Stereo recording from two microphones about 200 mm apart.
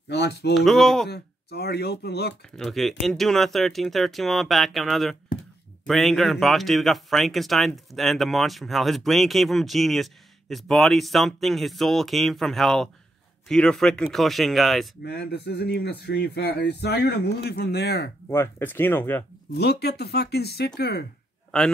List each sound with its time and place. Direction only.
0.1 s speech: 55° left (ahead or behind)
0.6 s speech: centre (ahead or behind)
1.0 s speech: 55° left (ahead or behind)
2.5 s speech: centre (ahead or behind)
15.0 s speech: 55° left (ahead or behind)
18.3 s speech: 10° left (ahead or behind)
19.5 s speech: 55° left (ahead or behind)
21.5 s a man's voice: 5° left (ahead or behind)